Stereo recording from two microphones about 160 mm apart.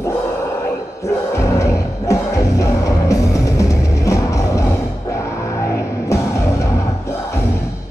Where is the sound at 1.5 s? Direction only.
20° left (ahead or behind).